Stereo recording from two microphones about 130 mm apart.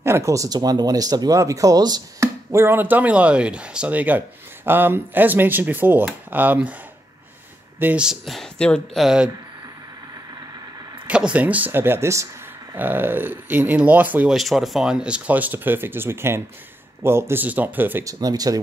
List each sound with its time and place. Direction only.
0.0 s speech: 20° right (ahead or behind)
7.8 s speech: 10° right (ahead or behind)
11.1 s speech: 10° right (ahead or behind)
14.3 s speech: centre (ahead or behind)
18.0 s speech: 30° right (ahead or behind)